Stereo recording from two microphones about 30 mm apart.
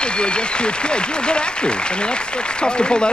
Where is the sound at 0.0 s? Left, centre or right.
Left.